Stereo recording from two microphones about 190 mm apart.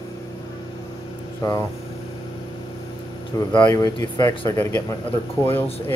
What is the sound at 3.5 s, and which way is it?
Speech, 10° left (ahead or behind).